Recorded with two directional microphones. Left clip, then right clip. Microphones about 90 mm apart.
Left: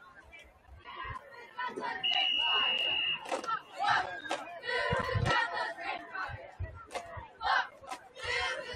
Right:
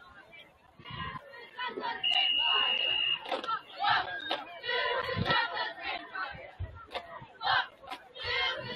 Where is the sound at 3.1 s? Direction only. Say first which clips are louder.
Right 1 dB; centre (ahead or behind).